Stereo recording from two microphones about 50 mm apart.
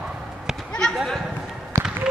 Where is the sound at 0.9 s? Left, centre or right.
Centre.